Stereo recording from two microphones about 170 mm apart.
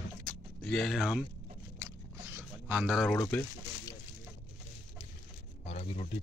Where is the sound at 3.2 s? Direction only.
15° left (ahead or behind).